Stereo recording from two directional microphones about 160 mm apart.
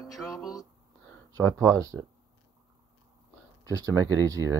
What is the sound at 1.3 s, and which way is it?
Speech, 10° left (ahead or behind).